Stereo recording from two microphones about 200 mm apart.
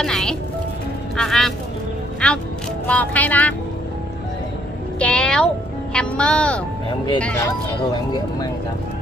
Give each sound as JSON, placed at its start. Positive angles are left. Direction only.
{"t": 0.0, "sound": "music", "side_deg": 5}
{"t": 1.1, "sound": "vehicle", "side_deg": 0}
{"t": 2.2, "sound": "music", "side_deg": 5}
{"t": 2.9, "sound": "speech", "side_deg": 10}
{"t": 4.9, "sound": "speech", "side_deg": 5}
{"t": 7.9, "sound": "speech", "side_deg": 20}